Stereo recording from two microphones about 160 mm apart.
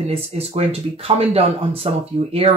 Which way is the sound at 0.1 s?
40° right (ahead or behind).